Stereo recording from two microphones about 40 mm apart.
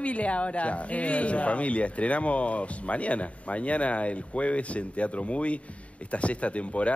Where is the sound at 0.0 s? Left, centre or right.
Left.